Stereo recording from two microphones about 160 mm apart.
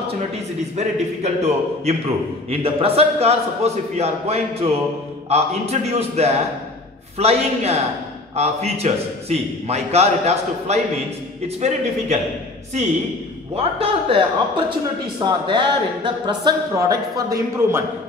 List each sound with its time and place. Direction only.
0.7 s a man's voice: 45° right (ahead or behind)
13.6 s a man's voice: 35° right (ahead or behind); by 17.8 s 15° right (ahead or behind)